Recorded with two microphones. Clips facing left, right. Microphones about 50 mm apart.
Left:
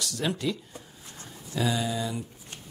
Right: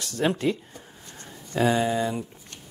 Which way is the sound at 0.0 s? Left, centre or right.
Right.